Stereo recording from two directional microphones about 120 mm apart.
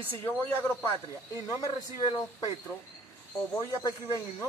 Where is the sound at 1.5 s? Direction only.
30° left (ahead or behind).